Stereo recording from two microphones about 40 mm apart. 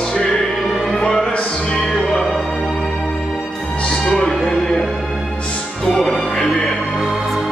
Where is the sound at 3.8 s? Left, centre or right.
Centre.